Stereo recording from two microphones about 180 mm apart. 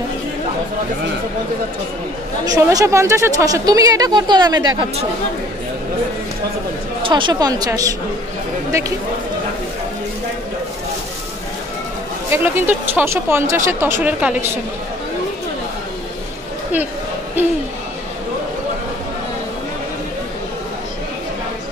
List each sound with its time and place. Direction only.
2.4 s a woman's voice: 20° right (ahead or behind)
7.1 s a woman's voice: 25° right (ahead or behind)
12.3 s speech: 10° right (ahead or behind)